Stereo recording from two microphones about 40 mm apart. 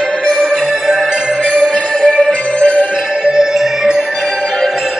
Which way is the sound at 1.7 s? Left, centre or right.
Left.